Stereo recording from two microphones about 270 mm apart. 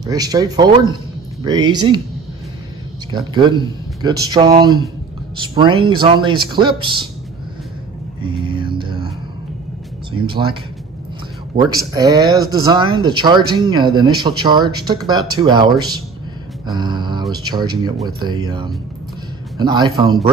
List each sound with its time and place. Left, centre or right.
0.0 s speech: centre
3.1 s speech: centre
8.2 s music: centre
10.2 s speech: centre
11.9 s speech: centre
19.5 s speech: centre